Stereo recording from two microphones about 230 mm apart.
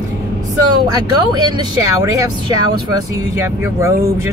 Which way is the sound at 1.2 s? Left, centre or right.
Centre.